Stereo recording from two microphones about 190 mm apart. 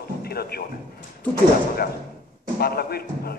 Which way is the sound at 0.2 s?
55° left (ahead or behind).